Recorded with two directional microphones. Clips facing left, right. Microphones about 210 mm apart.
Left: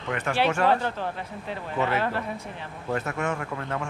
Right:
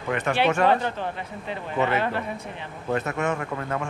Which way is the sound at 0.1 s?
20° right (ahead or behind).